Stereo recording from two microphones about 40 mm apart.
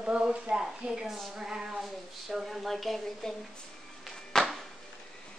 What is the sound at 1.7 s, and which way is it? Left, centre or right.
A woman's voice, centre.